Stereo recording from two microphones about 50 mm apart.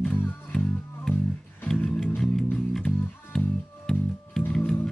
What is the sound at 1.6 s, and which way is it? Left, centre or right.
Music, centre.